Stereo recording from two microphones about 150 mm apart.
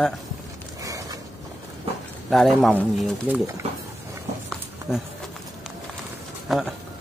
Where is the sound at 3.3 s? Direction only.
10° right (ahead or behind).